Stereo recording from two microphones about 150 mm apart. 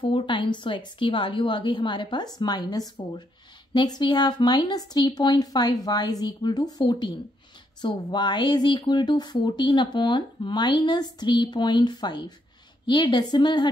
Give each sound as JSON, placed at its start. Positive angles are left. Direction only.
{"t": 0.0, "sound": "a woman's voice", "side_deg": 35}